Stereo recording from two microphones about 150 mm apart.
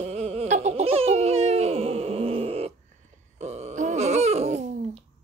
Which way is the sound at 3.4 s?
50° right (ahead or behind).